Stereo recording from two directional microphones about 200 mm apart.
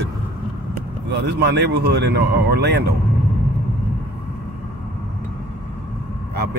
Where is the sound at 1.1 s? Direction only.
60° right (ahead or behind).